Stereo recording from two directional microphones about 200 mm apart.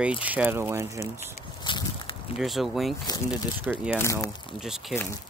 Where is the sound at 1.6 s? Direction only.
25° left (ahead or behind).